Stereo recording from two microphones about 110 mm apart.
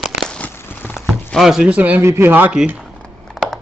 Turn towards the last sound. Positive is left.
turn(degrees=0)  # may be behind; listen again after turning